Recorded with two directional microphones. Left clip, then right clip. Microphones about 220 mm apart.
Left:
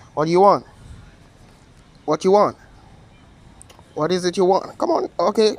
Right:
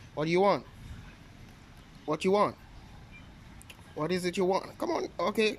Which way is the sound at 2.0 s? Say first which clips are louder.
Left 12 dB; 5° right (ahead or behind).